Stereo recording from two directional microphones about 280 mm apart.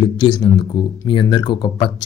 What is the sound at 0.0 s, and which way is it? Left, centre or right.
Speech, centre.